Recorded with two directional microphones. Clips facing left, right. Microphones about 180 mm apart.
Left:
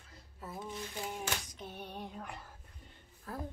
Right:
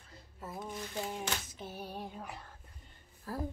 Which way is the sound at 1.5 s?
5° right (ahead or behind).